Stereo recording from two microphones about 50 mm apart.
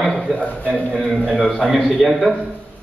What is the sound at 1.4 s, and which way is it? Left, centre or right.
Speech, centre.